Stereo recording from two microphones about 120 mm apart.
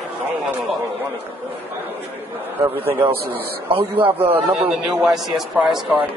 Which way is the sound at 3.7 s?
50° right (ahead or behind).